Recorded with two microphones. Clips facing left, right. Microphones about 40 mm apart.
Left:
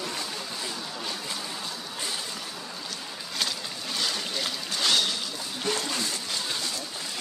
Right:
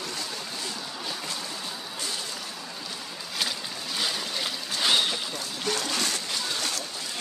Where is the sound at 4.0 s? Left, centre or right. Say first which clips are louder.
Even; centre.